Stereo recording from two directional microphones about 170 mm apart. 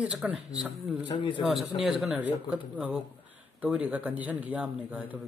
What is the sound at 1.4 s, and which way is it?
A man's voice, centre (ahead or behind).